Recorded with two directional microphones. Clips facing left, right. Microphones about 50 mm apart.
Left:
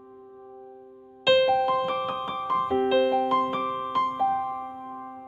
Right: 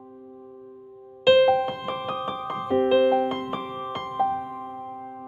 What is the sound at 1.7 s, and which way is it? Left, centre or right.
Music, centre.